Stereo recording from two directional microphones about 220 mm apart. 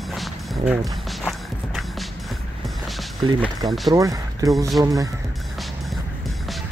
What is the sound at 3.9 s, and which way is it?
Speech, 15° right (ahead or behind).